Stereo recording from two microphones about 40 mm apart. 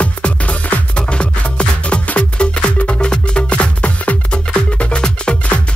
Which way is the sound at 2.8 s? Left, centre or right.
Left.